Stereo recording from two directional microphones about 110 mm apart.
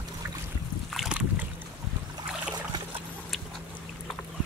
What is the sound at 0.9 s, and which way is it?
Boat, 5° right (ahead or behind).